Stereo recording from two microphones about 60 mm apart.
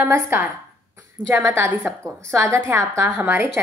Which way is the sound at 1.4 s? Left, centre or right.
Right.